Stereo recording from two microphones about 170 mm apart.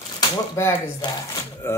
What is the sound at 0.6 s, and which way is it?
Speech, 15° left (ahead or behind).